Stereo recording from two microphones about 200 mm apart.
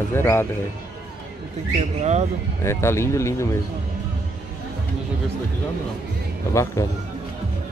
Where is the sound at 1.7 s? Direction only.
35° right (ahead or behind).